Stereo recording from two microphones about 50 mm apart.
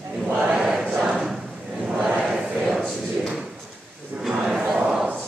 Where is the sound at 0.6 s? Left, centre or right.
Centre.